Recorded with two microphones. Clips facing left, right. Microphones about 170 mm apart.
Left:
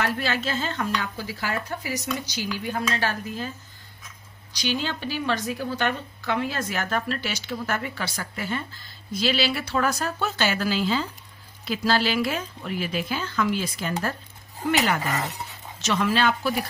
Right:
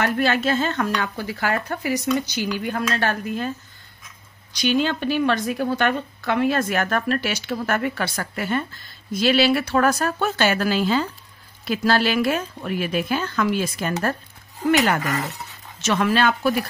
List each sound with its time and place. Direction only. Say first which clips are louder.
0.0 s speech: right 6 dB; 55° right (ahead or behind)
4.6 s speech: right 7 dB; 55° right (ahead or behind)
15.9 s speech: right 3 dB; 55° right (ahead or behind)